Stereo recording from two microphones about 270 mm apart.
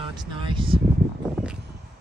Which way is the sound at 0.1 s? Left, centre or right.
Centre.